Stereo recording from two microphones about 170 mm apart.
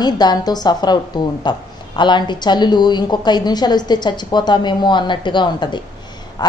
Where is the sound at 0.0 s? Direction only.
25° left (ahead or behind).